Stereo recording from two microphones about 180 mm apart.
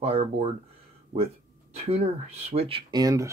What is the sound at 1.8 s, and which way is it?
Speech, 35° right (ahead or behind).